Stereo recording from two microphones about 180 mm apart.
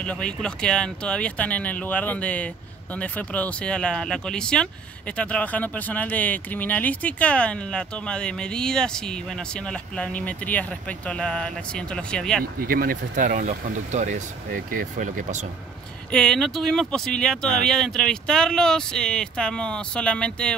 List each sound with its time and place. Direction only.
0.0 s speech: 5° left (ahead or behind)
12.5 s speech: 55° right (ahead or behind)
16.1 s speech: 5° left (ahead or behind)